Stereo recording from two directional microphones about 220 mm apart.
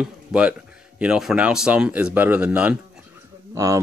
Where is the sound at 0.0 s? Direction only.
5° right (ahead or behind).